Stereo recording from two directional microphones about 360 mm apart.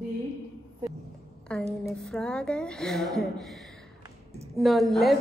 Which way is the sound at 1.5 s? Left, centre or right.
Centre.